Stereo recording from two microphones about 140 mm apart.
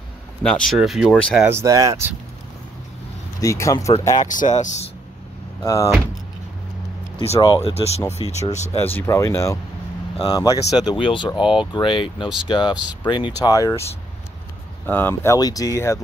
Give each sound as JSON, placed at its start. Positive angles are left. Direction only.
{"t": 0.4, "sound": "speech", "side_deg": 5}
{"t": 1.1, "sound": "speech", "side_deg": 10}
{"t": 1.4, "sound": "speech", "side_deg": -20}
{"t": 3.3, "sound": "speech", "side_deg": 20}
{"t": 4.2, "sound": "speech", "side_deg": 65}
{"t": 5.6, "sound": "speech", "side_deg": 25}
{"t": 7.3, "sound": "speech", "side_deg": 25}
{"t": 7.6, "sound": "speech", "side_deg": 45}
{"t": 8.7, "sound": "speech", "side_deg": 15}
{"t": 15.3, "sound": "speech", "side_deg": 25}